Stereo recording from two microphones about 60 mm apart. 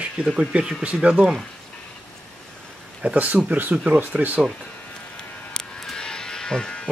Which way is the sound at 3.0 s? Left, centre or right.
Right.